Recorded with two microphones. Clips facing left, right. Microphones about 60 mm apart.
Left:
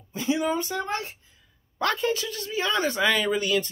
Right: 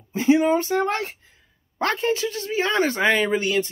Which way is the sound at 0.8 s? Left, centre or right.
Right.